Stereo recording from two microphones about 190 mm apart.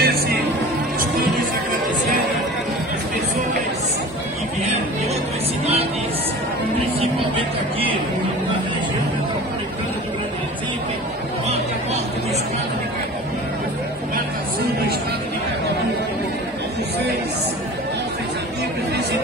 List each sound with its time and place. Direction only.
0.0 s music: 55° right (ahead or behind)